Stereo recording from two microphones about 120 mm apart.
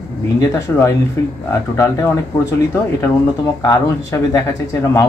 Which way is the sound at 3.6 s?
30° left (ahead or behind).